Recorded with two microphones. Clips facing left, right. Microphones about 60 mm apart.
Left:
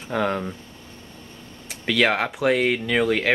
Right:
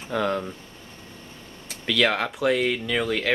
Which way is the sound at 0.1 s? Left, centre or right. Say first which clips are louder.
Left 1 dB; centre.